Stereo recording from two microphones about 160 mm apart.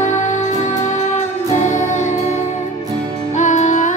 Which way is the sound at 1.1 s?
50° left (ahead or behind).